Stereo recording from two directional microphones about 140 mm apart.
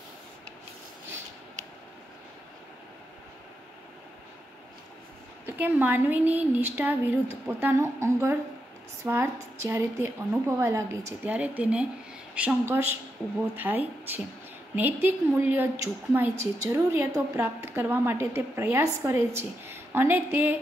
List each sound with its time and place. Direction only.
5.6 s a woman's voice: 10° right (ahead or behind)